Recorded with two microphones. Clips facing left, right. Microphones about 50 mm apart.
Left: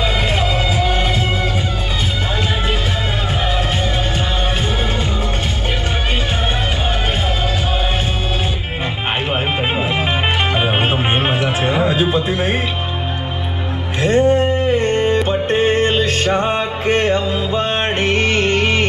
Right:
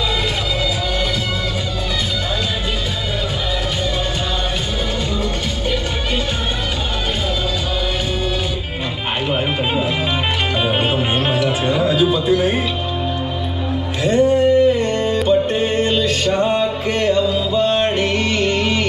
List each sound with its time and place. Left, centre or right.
10.5 s music: left
14.0 s music: left